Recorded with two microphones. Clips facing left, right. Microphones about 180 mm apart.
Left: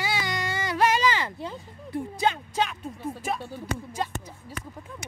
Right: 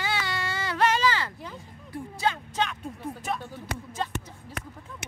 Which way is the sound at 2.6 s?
5° left (ahead or behind).